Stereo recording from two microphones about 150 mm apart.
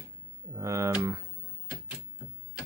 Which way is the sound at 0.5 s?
20° right (ahead or behind).